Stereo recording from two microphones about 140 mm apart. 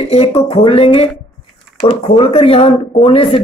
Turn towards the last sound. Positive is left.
turn(degrees=40)  # may be behind; listen again after turning